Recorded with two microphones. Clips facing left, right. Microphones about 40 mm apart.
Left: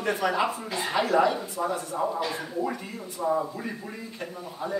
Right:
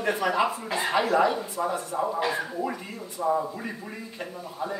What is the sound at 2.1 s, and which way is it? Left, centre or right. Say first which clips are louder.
Speech: right 3 dB; centre.